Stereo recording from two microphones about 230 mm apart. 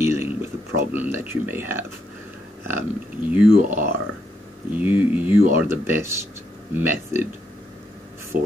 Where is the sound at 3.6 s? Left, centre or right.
Right.